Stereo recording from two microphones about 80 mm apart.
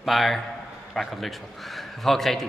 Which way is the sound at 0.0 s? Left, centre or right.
Centre.